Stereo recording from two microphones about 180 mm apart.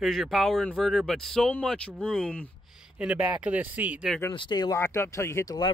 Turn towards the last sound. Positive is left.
turn(degrees=20)  # may be behind; listen again after turning